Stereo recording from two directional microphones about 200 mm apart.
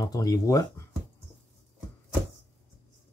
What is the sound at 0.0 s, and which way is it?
Speech, 15° left (ahead or behind).